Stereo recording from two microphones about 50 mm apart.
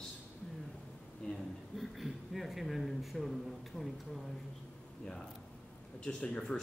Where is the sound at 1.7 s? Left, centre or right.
Centre.